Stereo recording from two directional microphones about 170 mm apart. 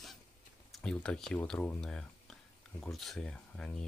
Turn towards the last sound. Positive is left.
turn(degrees=5)  # may be behind; listen again after turning